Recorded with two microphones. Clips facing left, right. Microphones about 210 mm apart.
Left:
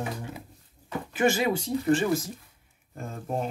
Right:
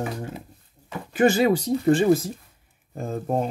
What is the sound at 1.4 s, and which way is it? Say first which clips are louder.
Speech: right 6 dB; 40° right (ahead or behind).